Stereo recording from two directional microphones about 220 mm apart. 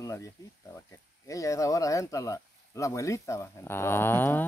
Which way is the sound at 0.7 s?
15° left (ahead or behind).